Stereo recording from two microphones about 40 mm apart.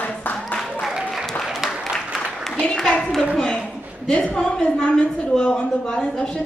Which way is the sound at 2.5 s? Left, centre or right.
Left.